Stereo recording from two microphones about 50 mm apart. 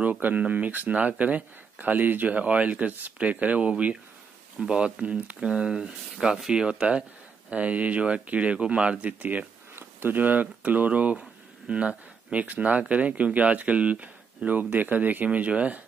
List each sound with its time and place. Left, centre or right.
0.0 s speech: right
9.8 s speech: right